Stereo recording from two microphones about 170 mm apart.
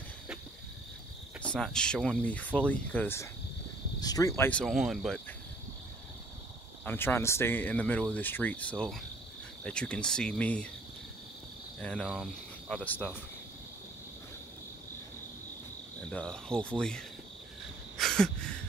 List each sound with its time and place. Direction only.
1.4 s speech: 5° left (ahead or behind)
4.5 s speech: 5° left (ahead or behind)
6.8 s speech: 10° left (ahead or behind)
11.8 s speech: 5° left (ahead or behind)
16.1 s speech: 5° left (ahead or behind)
17.9 s a sound: centre (ahead or behind)